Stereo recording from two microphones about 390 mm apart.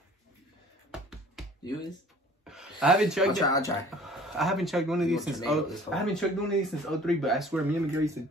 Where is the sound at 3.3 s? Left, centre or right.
Centre.